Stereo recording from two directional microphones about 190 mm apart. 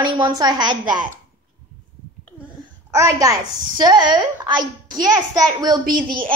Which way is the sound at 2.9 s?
15° right (ahead or behind).